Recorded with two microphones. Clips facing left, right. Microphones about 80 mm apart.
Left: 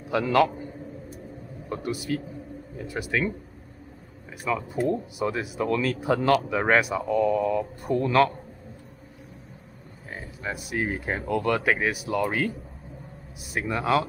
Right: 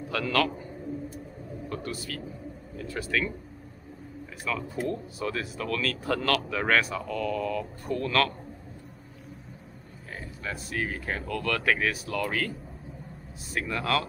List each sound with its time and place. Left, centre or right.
0.1 s speech: centre
1.7 s a man's voice: centre
4.5 s speech: left
10.1 s speech: centre